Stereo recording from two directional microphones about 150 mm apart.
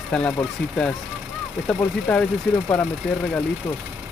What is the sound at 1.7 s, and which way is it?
Speech, 10° left (ahead or behind).